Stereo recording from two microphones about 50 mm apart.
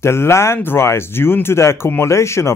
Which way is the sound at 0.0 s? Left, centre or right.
Left.